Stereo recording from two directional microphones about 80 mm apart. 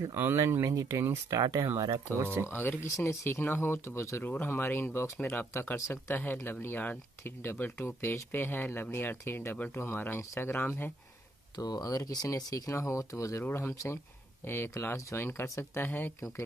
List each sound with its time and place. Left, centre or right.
0.1 s speech: right
2.4 s speech: left
4.2 s speech: left
5.0 s speech: left
11.5 s speech: left
13.4 s speech: left